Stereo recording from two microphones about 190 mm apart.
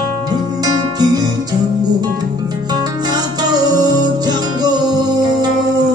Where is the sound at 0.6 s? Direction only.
20° right (ahead or behind).